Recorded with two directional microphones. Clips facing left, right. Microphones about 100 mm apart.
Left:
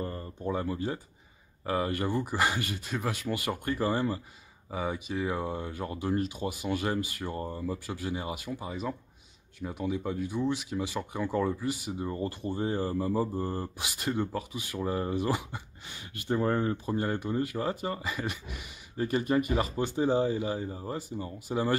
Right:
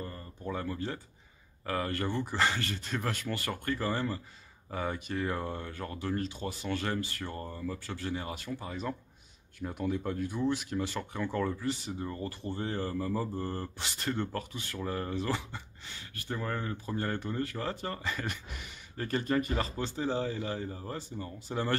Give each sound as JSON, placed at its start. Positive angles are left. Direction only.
{"t": 0.4, "sound": "speech", "side_deg": 20}
{"t": 12.1, "sound": "speech", "side_deg": 20}